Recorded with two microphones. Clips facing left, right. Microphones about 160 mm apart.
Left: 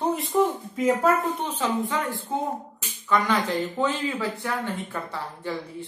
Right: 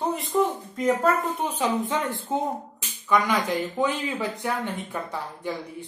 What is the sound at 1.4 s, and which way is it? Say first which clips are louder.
Speech: right 1 dB; 15° right (ahead or behind).